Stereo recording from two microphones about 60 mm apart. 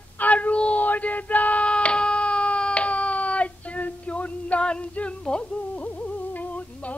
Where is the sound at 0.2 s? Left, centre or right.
Left.